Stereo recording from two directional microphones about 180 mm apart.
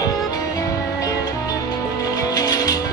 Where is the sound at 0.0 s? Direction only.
20° left (ahead or behind).